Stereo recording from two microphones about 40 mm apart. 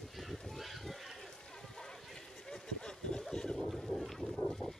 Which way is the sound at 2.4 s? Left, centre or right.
Centre.